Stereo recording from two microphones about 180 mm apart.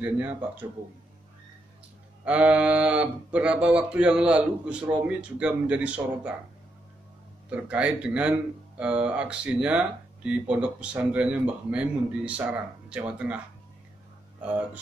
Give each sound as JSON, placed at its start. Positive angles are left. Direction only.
{"t": 0.0, "sound": "speech", "side_deg": -10}
{"t": 2.2, "sound": "speech", "side_deg": -5}
{"t": 7.4, "sound": "speech", "side_deg": -5}
{"t": 14.4, "sound": "speech", "side_deg": -10}